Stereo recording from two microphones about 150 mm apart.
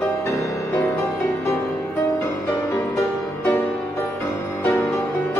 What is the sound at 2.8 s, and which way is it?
Music, centre (ahead or behind).